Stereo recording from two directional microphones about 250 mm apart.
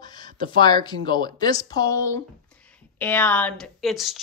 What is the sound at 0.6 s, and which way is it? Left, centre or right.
Speech, centre.